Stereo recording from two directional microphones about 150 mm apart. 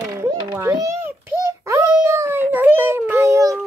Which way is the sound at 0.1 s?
20° right (ahead or behind).